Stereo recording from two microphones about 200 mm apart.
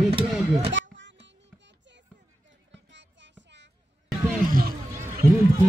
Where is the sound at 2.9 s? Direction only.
65° right (ahead or behind).